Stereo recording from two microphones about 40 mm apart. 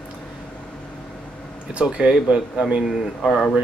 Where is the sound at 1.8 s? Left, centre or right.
Right.